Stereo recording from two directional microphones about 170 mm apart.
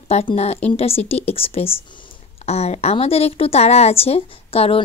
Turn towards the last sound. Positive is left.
turn(degrees=35)  # may be behind; listen again after turning